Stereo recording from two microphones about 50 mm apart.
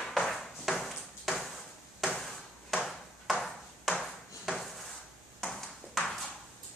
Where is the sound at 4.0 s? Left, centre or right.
Centre.